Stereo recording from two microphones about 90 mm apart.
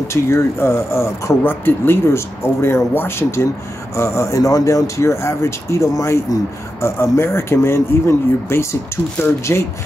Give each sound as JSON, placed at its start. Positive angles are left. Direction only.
{"t": 0.1, "sound": "speech", "side_deg": 30}